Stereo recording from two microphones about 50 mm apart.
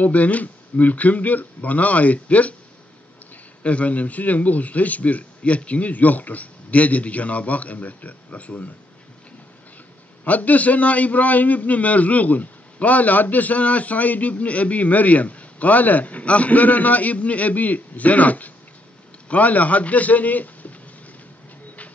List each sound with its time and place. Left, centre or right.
0.0 s a man's voice: left
3.6 s a man's voice: left
10.2 s a man's voice: left